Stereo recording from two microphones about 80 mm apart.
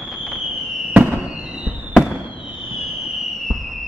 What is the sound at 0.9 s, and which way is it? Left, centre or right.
Fireworks, centre.